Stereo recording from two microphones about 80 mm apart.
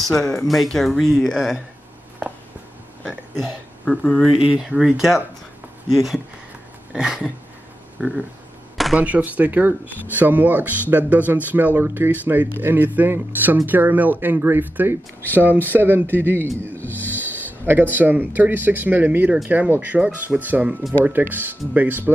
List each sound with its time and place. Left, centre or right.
0.0 s speech: centre
3.8 s speech: centre
4.6 s speech: centre
8.9 s speech: centre
16.7 s speech: left
17.2 s speech: right